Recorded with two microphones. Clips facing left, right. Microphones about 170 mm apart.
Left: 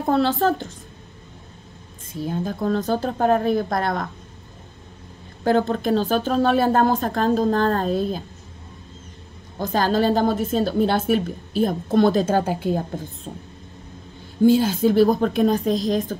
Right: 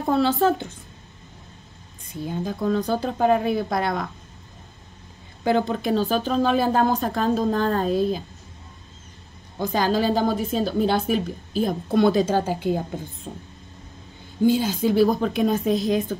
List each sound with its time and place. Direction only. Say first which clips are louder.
0.1 s a woman's voice: even; centre (ahead or behind)
2.3 s a woman's voice: even; centre (ahead or behind)
5.4 s a woman's voice: left 2 dB; 10° right (ahead or behind)
9.7 s a woman's voice: left 2 dB; centre (ahead or behind)
14.4 s a woman's voice: left 4 dB; 50° left (ahead or behind)
14.8 s a woman's voice: left 2 dB; centre (ahead or behind)